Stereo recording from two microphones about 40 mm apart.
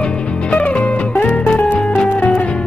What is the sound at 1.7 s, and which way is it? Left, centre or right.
Music, left.